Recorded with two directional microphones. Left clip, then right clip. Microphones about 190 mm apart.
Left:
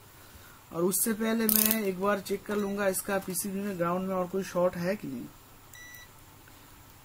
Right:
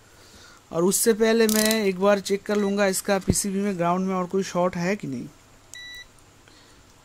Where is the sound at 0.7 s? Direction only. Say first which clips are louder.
Right 9 dB; 40° right (ahead or behind).